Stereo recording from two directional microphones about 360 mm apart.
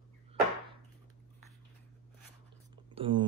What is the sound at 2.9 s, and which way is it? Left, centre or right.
Speech, centre.